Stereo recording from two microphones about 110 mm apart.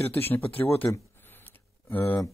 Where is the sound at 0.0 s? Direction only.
20° left (ahead or behind).